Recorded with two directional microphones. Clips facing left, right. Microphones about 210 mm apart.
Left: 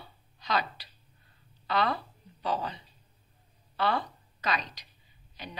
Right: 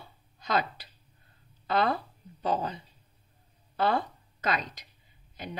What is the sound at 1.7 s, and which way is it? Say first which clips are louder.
Speech: right 2 dB; 45° right (ahead or behind).